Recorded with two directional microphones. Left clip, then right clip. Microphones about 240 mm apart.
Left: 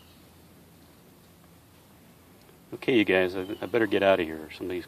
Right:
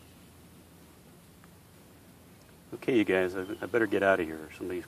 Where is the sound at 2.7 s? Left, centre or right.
Left.